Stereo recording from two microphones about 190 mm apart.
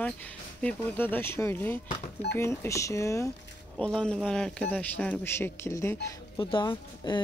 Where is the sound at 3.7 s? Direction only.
5° left (ahead or behind).